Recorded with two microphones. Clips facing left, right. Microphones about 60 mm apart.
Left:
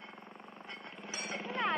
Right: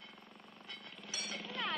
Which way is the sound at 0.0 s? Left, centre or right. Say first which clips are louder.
Left 6 dB; left.